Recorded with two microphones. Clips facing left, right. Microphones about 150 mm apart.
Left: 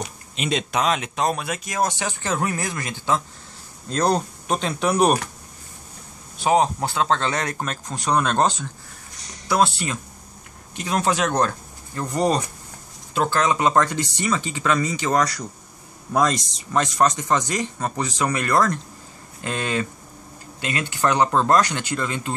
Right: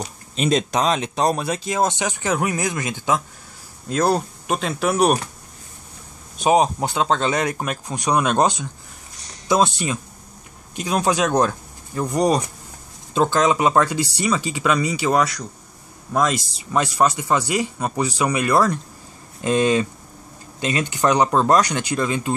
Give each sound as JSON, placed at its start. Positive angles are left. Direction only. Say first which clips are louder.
{"t": 0.0, "sound": "speech", "louder": "right 5 dB", "side_deg": -40}
{"t": 3.9, "sound": "speech", "louder": "right 2 dB", "side_deg": -5}
{"t": 6.3, "sound": "speech", "louder": "right 2 dB", "side_deg": -15}